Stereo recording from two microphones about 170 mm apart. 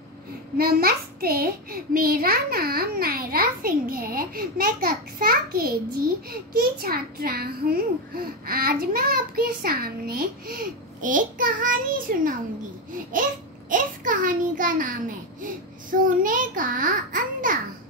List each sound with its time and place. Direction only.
0.6 s a child's voice: 60° right (ahead or behind)
13.7 s a child's voice: 50° right (ahead or behind)